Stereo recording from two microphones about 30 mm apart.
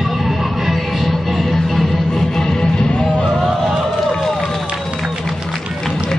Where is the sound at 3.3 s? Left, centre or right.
Centre.